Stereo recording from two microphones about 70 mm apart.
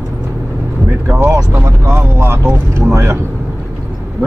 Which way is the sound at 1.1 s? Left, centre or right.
Right.